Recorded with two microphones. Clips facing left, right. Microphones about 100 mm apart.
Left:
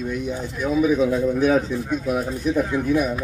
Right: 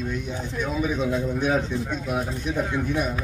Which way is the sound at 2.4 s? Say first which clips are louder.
Left 7 dB; 5° left (ahead or behind).